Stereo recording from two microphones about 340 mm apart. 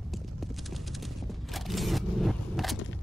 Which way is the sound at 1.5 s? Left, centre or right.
Centre.